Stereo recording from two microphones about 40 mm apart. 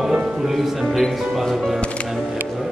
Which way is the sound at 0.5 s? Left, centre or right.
Centre.